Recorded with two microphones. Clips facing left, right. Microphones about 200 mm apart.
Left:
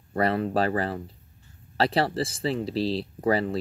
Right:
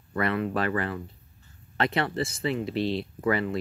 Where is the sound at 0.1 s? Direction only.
35° left (ahead or behind).